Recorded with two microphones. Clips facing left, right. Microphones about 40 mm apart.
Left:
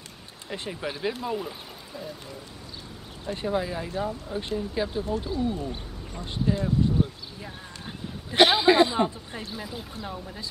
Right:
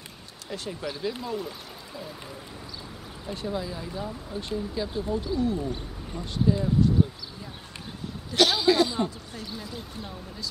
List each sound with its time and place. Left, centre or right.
0.5 s speech: left
3.4 s speech: left